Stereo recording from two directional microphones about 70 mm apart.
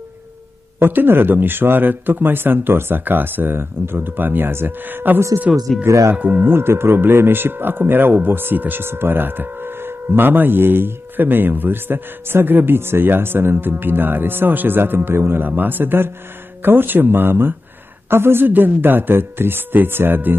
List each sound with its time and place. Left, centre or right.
0.7 s speech: right
5.9 s speech: right
6.1 s speech: right
6.5 s speech: right